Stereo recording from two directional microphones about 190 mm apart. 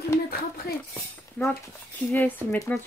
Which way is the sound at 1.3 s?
10° left (ahead or behind).